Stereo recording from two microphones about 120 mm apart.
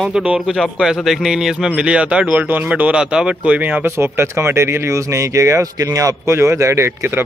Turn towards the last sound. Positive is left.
turn(degrees=-20)  # may be behind; listen again after turning